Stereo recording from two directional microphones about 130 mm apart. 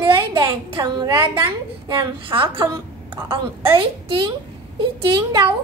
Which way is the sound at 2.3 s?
25° right (ahead or behind).